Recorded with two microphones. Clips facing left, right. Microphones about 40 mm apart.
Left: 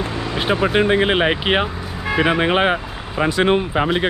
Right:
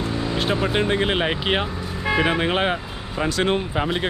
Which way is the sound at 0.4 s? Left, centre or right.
Left.